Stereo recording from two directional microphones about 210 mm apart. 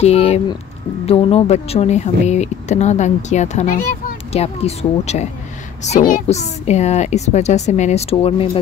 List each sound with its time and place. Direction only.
0.0 s speech: 30° left (ahead or behind)